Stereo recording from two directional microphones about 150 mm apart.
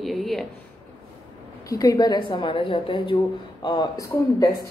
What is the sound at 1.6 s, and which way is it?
Speech, 25° left (ahead or behind).